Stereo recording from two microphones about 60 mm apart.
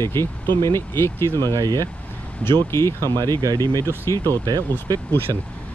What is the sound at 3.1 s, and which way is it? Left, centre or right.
Speech, right.